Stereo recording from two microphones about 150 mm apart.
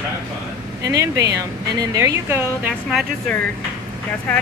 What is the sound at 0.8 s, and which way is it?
Speech, 20° right (ahead or behind).